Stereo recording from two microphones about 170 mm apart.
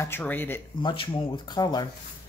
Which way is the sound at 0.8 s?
30° left (ahead or behind).